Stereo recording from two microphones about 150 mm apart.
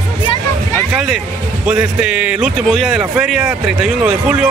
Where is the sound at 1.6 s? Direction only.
5° right (ahead or behind).